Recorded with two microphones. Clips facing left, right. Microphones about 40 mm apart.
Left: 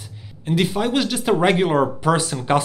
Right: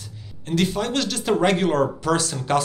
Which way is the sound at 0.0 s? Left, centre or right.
Centre.